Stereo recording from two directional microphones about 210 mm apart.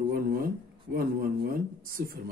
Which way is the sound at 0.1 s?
45° right (ahead or behind).